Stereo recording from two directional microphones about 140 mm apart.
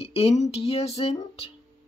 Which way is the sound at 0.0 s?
45° left (ahead or behind).